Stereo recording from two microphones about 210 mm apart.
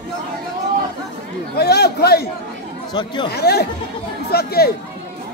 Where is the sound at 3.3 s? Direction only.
50° left (ahead or behind).